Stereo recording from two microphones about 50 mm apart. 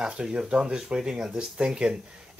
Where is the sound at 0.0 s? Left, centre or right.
Centre.